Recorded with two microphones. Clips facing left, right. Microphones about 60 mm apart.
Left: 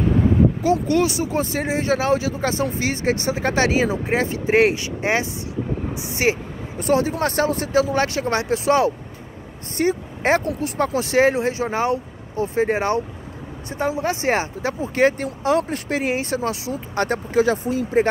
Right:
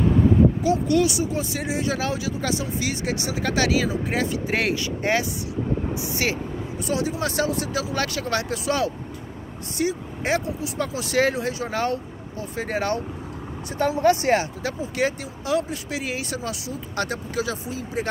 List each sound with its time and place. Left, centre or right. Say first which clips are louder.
0.6 s speech: left 2 dB; left
6.8 s speech: left 6 dB; left
9.8 s speech: left 4 dB; left